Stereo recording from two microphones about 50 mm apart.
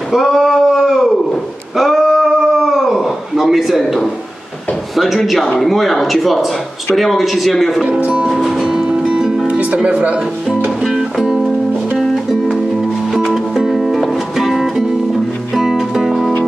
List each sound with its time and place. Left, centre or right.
0.1 s a sound: centre
4.9 s speech: centre
8.0 s music: right
8.3 s music: centre
9.8 s speech: right
12.0 s music: centre